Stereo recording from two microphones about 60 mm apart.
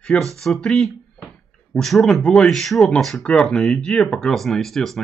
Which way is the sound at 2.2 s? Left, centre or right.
Centre.